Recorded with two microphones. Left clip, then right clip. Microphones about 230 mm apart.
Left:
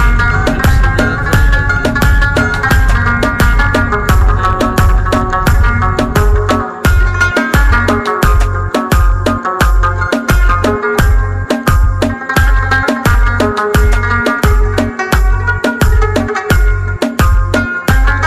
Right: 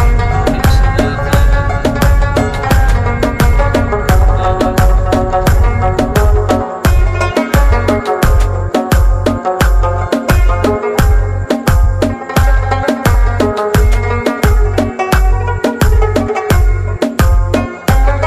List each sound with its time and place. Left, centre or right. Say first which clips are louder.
0.4 s music: left 1 dB; centre